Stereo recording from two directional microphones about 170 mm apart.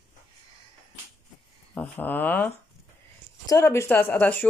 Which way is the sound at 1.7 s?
10° left (ahead or behind).